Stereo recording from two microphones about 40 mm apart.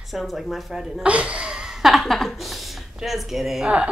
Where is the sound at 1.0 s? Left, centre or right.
Right.